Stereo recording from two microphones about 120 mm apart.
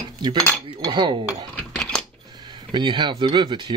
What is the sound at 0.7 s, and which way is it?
Speech, 35° right (ahead or behind).